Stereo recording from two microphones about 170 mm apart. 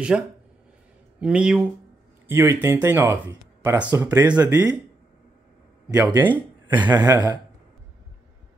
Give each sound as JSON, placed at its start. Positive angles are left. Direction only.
{"t": 0.1, "sound": "speech", "side_deg": -10}
{"t": 5.9, "sound": "speech", "side_deg": -15}
{"t": 6.9, "sound": "speech", "side_deg": -25}